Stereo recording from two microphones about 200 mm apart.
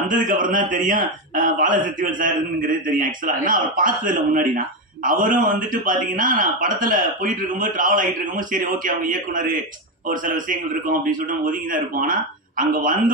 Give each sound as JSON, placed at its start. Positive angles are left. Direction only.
{"t": 0.3, "sound": "speech", "side_deg": -40}